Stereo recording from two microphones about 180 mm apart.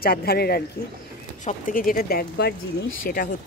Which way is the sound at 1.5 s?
50° left (ahead or behind).